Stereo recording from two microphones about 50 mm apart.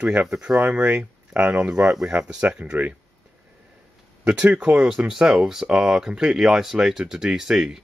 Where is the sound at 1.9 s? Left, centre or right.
Centre.